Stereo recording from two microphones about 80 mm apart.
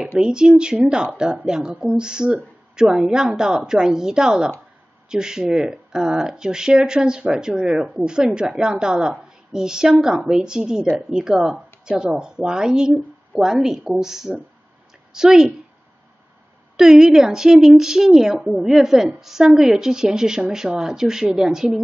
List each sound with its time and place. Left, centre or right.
0.2 s a woman's voice: centre
16.7 s a woman's voice: centre